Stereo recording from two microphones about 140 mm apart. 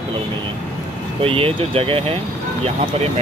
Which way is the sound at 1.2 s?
40° right (ahead or behind).